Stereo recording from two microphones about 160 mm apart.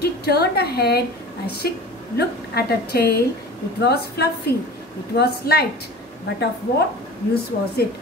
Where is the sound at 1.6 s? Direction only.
70° left (ahead or behind).